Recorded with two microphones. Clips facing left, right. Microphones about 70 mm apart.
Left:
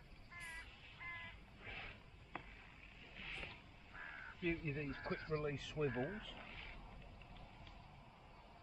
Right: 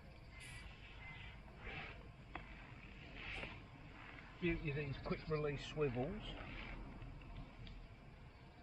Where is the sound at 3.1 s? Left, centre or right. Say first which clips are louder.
Right 1 dB; centre.